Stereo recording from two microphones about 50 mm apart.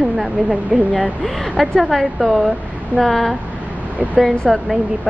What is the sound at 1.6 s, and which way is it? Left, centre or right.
A woman's voice, centre.